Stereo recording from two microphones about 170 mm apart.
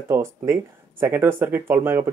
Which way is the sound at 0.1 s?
15° right (ahead or behind).